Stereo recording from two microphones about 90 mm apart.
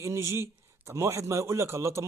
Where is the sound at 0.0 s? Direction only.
30° right (ahead or behind).